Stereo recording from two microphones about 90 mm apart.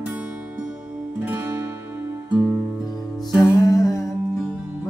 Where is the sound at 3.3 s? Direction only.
40° left (ahead or behind).